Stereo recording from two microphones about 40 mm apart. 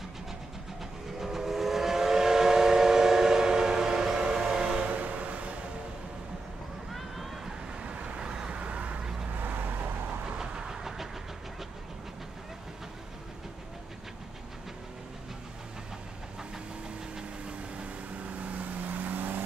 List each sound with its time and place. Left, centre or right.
1.2 s vehicle: centre
4.8 s a sound: right
6.9 s vehicle: centre
7.8 s vehicle: right
9.4 s vehicle: right
10.2 s vehicle: right
17.1 s vehicle: right
18.4 s vehicle: right